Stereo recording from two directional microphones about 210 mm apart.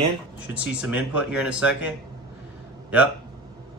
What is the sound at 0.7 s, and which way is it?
Speech, 5° right (ahead or behind).